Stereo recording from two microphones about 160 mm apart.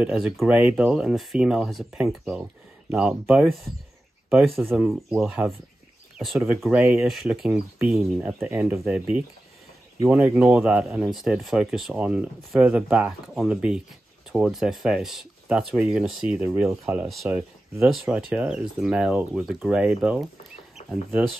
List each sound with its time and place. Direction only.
0.0 s speech: 5° right (ahead or behind)